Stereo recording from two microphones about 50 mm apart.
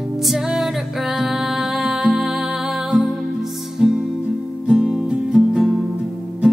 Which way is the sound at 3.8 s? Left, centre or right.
Centre.